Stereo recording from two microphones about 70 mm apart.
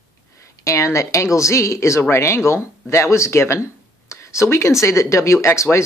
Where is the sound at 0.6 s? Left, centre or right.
Left.